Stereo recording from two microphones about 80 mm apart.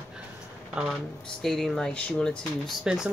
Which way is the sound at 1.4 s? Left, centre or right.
Centre.